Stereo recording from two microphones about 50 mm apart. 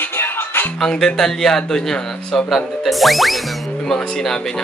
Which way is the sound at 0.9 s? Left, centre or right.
Centre.